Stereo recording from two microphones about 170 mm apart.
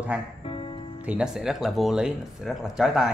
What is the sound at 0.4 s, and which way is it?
Music, 30° left (ahead or behind).